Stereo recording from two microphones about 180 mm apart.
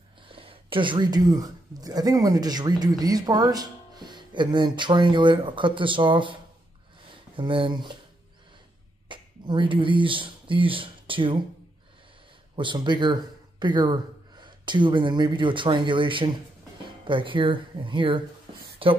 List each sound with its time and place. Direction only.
0.3 s speech: 30° right (ahead or behind)
9.1 s speech: 25° right (ahead or behind)
12.5 s a man's voice: 25° right (ahead or behind)